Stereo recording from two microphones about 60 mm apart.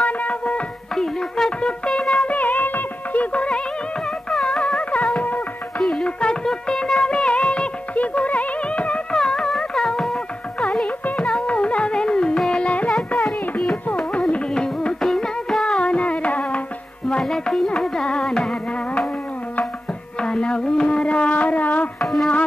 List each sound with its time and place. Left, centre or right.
0.0 s music: left
0.9 s music: centre
2.1 s music: left
4.3 s music: centre
4.6 s music: left
5.8 s music: centre
11.4 s music: centre
12.6 s music: centre
13.2 s music: centre; by 16.6 s left
17.2 s music: centre
20.2 s a sound: centre
22.0 s music: centre